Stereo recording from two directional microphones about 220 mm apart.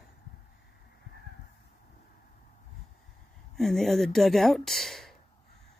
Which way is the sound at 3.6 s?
Centre (ahead or behind).